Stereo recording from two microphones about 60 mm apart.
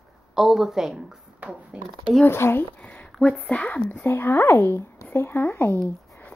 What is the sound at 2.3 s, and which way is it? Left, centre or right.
Speech, left.